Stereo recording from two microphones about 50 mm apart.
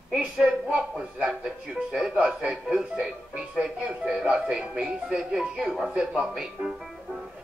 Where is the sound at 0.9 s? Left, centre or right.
Centre.